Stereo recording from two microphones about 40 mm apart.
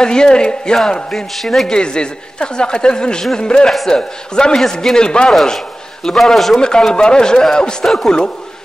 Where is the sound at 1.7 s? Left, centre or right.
Left.